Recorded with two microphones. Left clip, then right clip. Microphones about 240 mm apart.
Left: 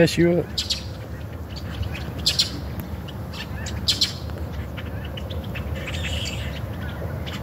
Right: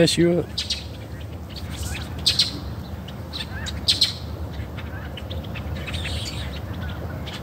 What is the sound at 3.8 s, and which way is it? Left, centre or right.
Bird, left.